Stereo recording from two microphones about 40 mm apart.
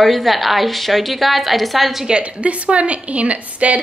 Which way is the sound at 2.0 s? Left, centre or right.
Right.